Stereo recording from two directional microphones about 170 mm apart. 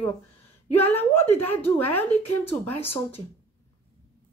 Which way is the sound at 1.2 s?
10° left (ahead or behind).